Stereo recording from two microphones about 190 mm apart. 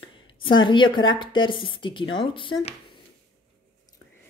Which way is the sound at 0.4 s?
25° left (ahead or behind).